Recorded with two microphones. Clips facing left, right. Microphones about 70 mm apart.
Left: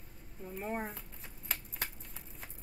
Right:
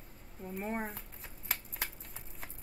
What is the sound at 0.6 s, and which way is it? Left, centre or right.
Shuffling cards, centre.